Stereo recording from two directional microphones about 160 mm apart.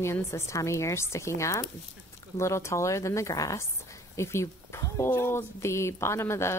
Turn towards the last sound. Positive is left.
turn(degrees=15)  # may be behind; listen again after turning